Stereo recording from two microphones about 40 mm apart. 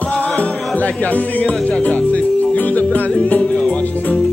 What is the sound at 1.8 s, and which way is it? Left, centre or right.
Music, left.